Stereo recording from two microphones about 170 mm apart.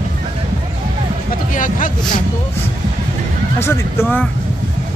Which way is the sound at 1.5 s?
50° left (ahead or behind).